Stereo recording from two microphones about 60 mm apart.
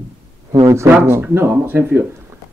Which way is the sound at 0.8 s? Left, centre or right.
Right.